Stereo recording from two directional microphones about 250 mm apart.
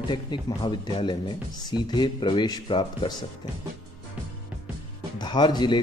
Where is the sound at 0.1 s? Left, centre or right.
Centre.